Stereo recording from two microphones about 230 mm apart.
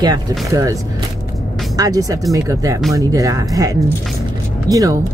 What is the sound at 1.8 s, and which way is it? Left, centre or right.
Speech, centre.